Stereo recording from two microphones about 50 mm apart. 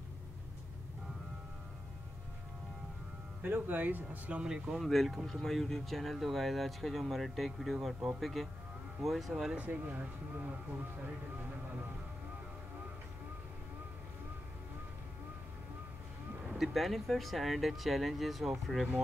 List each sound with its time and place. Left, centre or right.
3.4 s speech: right
4.4 s speech: centre
4.7 s speech: centre
9.6 s speech: right
16.5 s speech: centre